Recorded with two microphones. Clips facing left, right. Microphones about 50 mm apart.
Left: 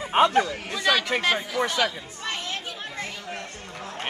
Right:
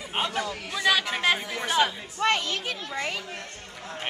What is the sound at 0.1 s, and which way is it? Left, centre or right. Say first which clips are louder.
Chatter: left 9 dB; left.